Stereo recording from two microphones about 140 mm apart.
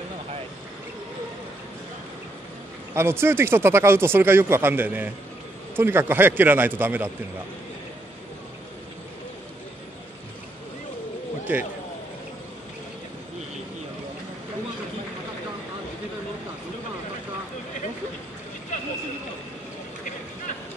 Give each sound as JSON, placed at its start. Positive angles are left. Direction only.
{"t": 2.9, "sound": "speech", "side_deg": -15}
{"t": 11.5, "sound": "speech", "side_deg": -10}